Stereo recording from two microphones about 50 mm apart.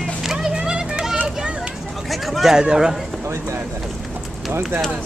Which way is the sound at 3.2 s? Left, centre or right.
Right.